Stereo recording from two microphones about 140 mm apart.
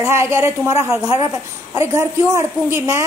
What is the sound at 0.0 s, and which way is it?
A woman's voice, 20° right (ahead or behind).